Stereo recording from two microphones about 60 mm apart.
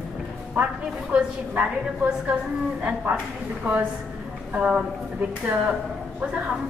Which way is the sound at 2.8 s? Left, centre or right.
Right.